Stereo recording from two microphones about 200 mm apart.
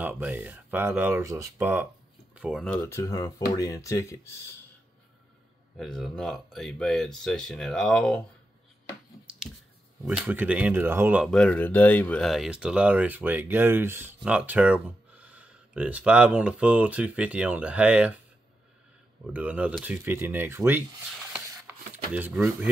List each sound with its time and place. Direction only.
0.0 s speech: 10° right (ahead or behind); by 4.4 s 15° left (ahead or behind)
5.8 s speech: centre (ahead or behind)
10.0 s speech: 5° right (ahead or behind)
11.2 s speech: 5° left (ahead or behind)
19.3 s speech: 5° right (ahead or behind)
21.3 s a sound: 5° right (ahead or behind)